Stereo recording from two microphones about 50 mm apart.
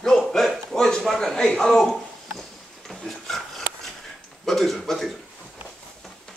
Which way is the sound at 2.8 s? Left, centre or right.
Centre.